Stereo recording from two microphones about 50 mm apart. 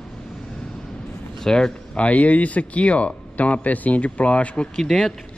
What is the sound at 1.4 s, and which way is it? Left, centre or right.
Speech, centre.